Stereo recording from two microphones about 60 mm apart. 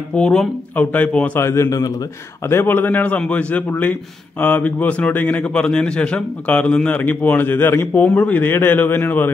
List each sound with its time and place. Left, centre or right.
0.1 s speech: centre
1.4 s a man's voice: left
1.7 s speech: left
2.4 s speech: left
3.7 s speech: left
7.0 s speech: left